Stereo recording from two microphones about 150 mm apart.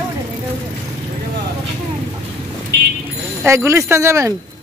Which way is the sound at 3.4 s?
15° right (ahead or behind).